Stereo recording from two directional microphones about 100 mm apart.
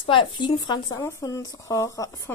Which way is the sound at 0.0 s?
55° left (ahead or behind).